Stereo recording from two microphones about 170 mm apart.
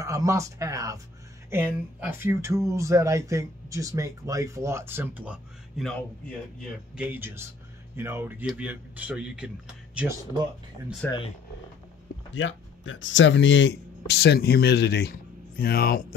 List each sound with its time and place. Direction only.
0.0 s speech: 20° right (ahead or behind)
5.9 s speech: 5° left (ahead or behind)
7.0 s speech: 10° right (ahead or behind)
11.0 s speech: 10° left (ahead or behind)
12.3 s speech: 90° left; by 16.1 s 60° left (ahead or behind)